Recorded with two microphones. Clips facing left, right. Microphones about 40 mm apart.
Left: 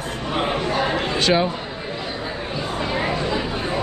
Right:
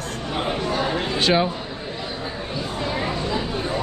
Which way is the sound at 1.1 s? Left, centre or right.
Centre.